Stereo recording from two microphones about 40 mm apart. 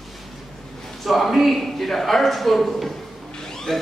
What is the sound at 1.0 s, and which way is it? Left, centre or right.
A man's voice, centre.